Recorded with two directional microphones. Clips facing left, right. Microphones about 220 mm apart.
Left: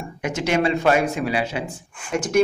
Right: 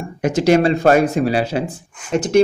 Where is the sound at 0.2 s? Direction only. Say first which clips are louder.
Right 7 dB; 35° right (ahead or behind).